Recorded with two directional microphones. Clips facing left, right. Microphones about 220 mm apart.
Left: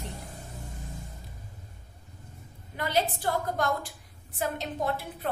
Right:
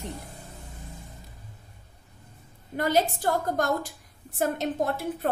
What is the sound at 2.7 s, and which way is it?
A woman's voice, 45° right (ahead or behind).